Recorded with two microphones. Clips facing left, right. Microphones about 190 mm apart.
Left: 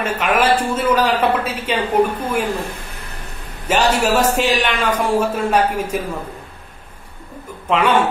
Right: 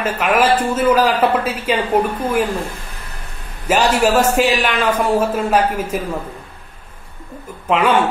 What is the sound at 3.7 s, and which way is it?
A man's voice, 10° right (ahead or behind).